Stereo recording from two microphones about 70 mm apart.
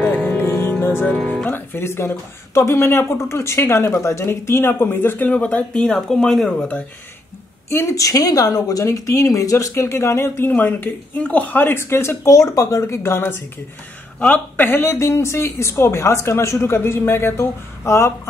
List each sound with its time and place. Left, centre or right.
0.4 s music: left
0.7 s music: left
1.0 s speech: centre
1.5 s speech: left; by 6.8 s centre
7.7 s a woman's voice: left
10.5 s speech: left